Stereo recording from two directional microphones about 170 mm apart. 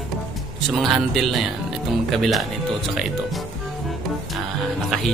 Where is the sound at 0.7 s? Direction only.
Centre (ahead or behind).